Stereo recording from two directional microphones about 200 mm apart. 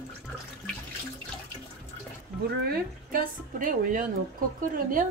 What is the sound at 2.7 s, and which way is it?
Speech, 45° right (ahead or behind).